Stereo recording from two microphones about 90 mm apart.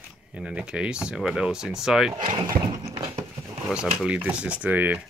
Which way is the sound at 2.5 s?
40° right (ahead or behind).